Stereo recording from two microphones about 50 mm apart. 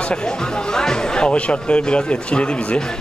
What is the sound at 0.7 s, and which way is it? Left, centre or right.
Speech, centre.